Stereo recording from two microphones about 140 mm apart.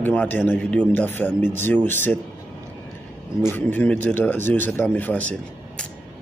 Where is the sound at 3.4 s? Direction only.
15° left (ahead or behind).